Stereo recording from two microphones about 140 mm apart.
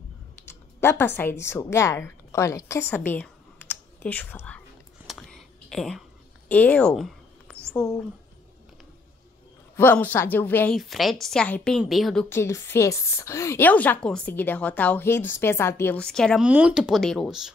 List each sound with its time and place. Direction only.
0.5 s speech: 15° left (ahead or behind)
5.0 s a sound: centre (ahead or behind)
6.5 s speech: 10° left (ahead or behind)
9.8 s a woman's voice: 15° left (ahead or behind)
10.8 s a woman's voice: centre (ahead or behind)
12.3 s a woman's voice: 20° left (ahead or behind)
16.4 s a woman's voice: 5° right (ahead or behind)